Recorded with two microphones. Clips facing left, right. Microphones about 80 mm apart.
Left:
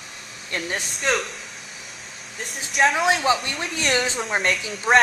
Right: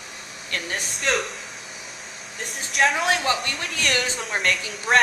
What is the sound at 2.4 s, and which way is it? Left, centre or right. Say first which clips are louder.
A woman's voice: left 1 dB; centre.